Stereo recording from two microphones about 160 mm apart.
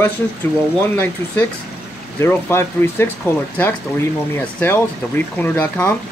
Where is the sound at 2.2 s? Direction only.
15° left (ahead or behind).